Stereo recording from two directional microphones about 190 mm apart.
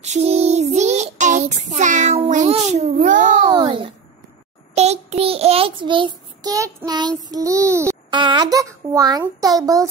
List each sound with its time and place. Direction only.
0.0 s child singing: 35° right (ahead or behind)
3.5 s a sound: 25° right (ahead or behind)
4.7 s child singing: 35° right (ahead or behind)
7.2 s a child's voice: 20° right (ahead or behind)